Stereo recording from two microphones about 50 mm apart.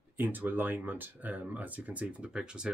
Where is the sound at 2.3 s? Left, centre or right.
Centre.